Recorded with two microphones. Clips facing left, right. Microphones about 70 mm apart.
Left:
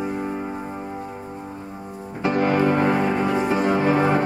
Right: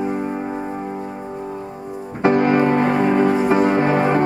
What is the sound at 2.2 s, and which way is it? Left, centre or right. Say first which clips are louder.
Music: right 6 dB; right.